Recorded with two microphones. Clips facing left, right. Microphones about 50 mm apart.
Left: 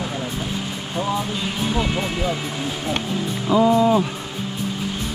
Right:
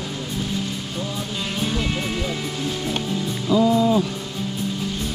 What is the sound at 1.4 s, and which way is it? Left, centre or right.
Speech, centre.